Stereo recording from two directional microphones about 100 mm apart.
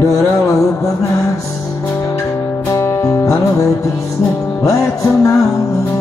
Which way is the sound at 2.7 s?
30° left (ahead or behind).